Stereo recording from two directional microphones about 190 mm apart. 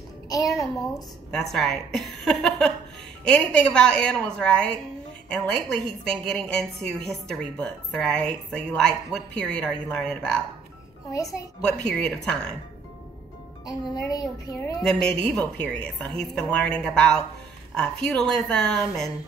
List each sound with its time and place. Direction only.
0.3 s a child's voice: 20° left (ahead or behind)
1.3 s a woman's voice: centre (ahead or behind)
11.1 s a child's voice: 20° left (ahead or behind)
11.9 s a woman's voice: 5° left (ahead or behind)
13.7 s a woman's voice: 20° left (ahead or behind)
14.8 s a woman's voice: 5° left (ahead or behind)